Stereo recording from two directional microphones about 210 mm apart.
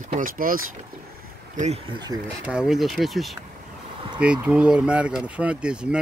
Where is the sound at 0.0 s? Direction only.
40° right (ahead or behind).